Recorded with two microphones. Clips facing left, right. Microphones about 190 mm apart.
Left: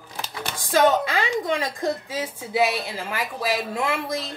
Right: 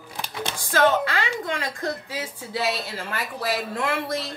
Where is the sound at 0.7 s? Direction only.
15° left (ahead or behind).